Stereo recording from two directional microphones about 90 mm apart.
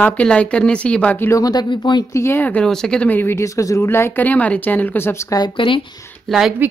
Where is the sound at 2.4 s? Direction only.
10° left (ahead or behind); by 5.4 s 30° left (ahead or behind).